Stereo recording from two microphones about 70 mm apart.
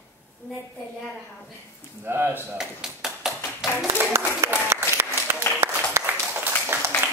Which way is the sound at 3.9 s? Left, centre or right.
Right.